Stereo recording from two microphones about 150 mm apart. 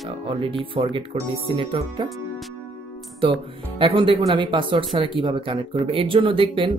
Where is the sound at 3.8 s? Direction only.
35° right (ahead or behind).